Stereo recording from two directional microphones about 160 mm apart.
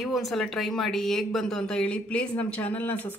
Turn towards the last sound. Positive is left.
turn(degrees=10)  # may be behind; listen again after turning